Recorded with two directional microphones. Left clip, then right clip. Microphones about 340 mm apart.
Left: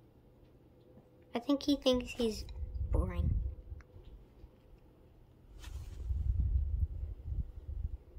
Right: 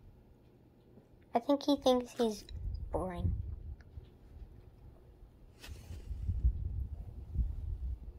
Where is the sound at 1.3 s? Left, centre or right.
Centre.